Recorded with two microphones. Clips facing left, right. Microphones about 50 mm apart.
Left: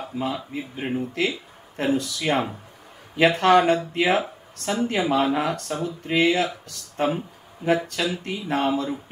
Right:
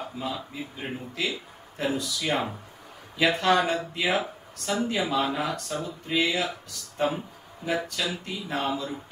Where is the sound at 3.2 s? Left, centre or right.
Left.